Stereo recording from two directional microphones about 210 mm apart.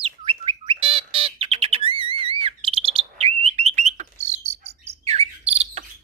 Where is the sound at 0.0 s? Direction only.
25° right (ahead or behind).